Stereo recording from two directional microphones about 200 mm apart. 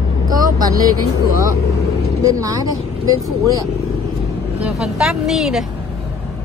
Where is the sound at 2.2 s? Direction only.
15° right (ahead or behind).